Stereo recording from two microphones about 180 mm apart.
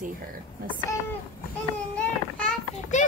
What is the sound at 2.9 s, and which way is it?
Speech, 45° left (ahead or behind).